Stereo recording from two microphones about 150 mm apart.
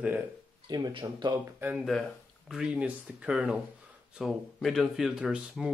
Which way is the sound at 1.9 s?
Centre (ahead or behind).